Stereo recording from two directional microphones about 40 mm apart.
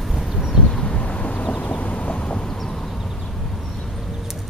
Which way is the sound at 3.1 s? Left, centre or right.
Centre.